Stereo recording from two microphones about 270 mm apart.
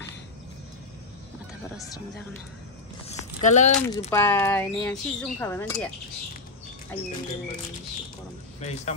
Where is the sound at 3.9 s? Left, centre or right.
Centre.